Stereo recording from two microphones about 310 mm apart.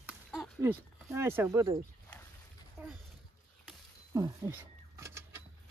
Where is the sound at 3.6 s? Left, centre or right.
Centre.